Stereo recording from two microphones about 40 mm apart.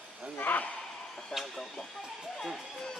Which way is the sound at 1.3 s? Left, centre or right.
Centre.